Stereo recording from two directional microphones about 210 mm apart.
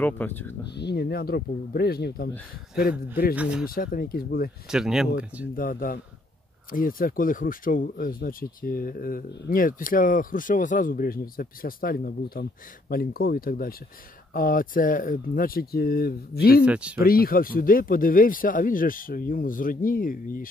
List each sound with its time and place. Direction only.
0.0 s speech: 10° left (ahead or behind)
0.7 s speech: 50° left (ahead or behind)
3.3 s speech: 5° right (ahead or behind)
3.6 s speech: 45° left (ahead or behind)
4.6 s speech: centre (ahead or behind)
5.6 s speech: 40° left (ahead or behind)
16.6 s speech: 5° right (ahead or behind)
17.0 s speech: 45° left (ahead or behind)